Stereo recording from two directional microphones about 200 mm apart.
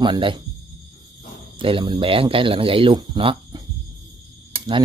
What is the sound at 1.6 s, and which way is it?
Speech, 25° right (ahead or behind).